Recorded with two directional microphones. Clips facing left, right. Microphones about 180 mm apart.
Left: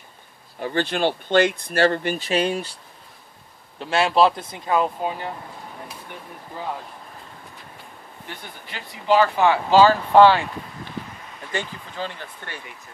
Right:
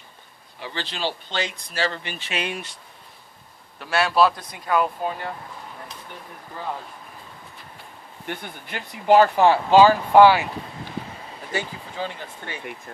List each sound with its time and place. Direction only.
0.6 s speech: 50° left (ahead or behind); by 2.8 s 35° left (ahead or behind)
3.8 s speech: 25° left (ahead or behind)
8.4 s speech: 55° right (ahead or behind)
9.7 s speech: 15° right (ahead or behind)
11.5 s speech: 10° right (ahead or behind)